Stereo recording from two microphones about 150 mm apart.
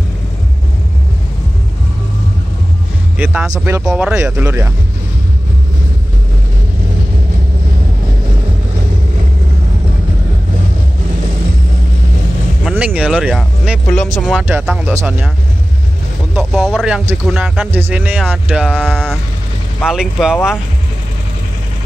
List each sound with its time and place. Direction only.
3.5 s speech: 15° right (ahead or behind)
3.8 s speech: 5° right (ahead or behind)
4.3 s speech: 15° right (ahead or behind)
12.6 s speech: 5° right (ahead or behind)
14.5 s speech: 15° right (ahead or behind)
16.3 s speech: centre (ahead or behind)
18.9 s speech: 5° left (ahead or behind)